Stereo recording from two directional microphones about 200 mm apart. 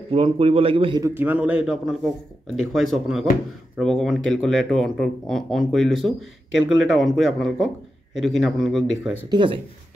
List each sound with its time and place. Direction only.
0.1 s a man's voice: 30° right (ahead or behind)
1.0 s speech: 10° right (ahead or behind)
9.3 s a man's voice: 25° right (ahead or behind)